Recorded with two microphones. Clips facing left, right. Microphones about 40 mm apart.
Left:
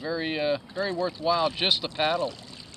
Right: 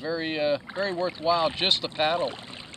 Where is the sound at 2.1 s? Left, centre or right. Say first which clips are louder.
Right 1 dB; right.